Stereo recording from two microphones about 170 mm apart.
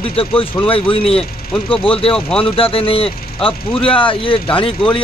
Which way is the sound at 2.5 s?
35° left (ahead or behind).